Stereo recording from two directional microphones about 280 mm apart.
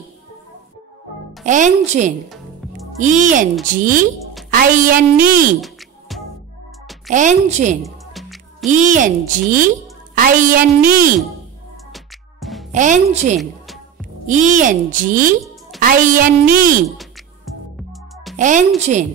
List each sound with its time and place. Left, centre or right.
1.4 s a child's voice: right
2.2 s music: centre
3.0 s a child's voice: right
5.1 s music: centre
7.1 s a child's voice: right
7.8 s music: centre
8.6 s a child's voice: right
11.9 s music: centre
12.7 s a child's voice: right
16.9 s music: centre
18.3 s music: right
18.8 s a child's voice: right